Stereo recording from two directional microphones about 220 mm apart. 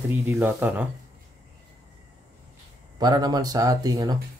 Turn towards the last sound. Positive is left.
turn(degrees=-15)  # may be behind; listen again after turning